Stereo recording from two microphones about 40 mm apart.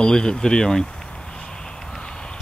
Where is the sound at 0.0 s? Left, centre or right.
Left.